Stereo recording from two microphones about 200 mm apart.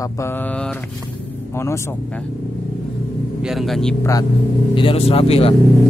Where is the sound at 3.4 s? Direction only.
Centre (ahead or behind).